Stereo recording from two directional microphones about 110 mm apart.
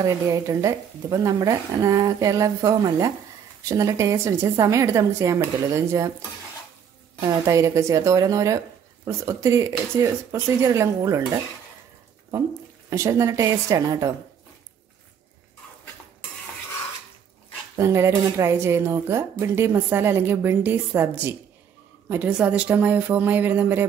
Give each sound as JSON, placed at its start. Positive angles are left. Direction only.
{"t": 0.0, "sound": "a woman's voice", "side_deg": -30}
{"t": 7.2, "sound": "speech", "side_deg": -30}
{"t": 12.9, "sound": "speech", "side_deg": -25}
{"t": 17.7, "sound": "a woman's voice", "side_deg": -25}